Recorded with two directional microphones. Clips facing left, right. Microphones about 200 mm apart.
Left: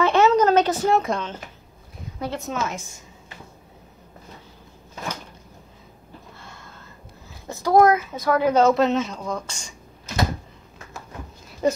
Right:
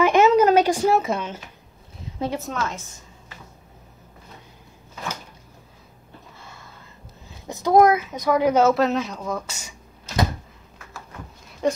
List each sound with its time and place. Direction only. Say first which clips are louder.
0.0 s a sound: right 1 dB; 15° right (ahead or behind)
0.9 s speech: even; 5° right (ahead or behind)
2.1 s a woman's voice: right 3 dB; 20° right (ahead or behind)
2.6 s a woman's voice: even; 15° left (ahead or behind)
6.3 s a sound: left 1 dB; 5° right (ahead or behind)
7.4 s speech: even; 20° right (ahead or behind)
11.6 s speech: left 1 dB; 5° left (ahead or behind)